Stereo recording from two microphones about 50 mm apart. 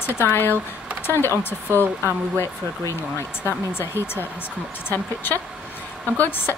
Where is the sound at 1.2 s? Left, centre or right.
Right.